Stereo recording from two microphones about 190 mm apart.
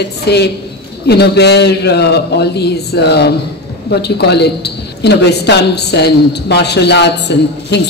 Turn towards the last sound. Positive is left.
turn(degrees=65)  # may be behind; listen again after turning